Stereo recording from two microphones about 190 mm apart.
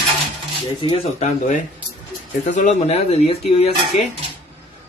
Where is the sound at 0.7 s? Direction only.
30° left (ahead or behind).